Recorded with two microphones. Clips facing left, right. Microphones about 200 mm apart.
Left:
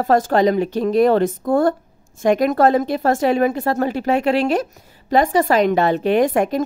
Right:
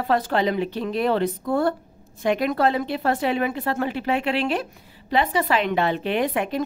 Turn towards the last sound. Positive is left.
turn(degrees=45)  # may be behind; listen again after turning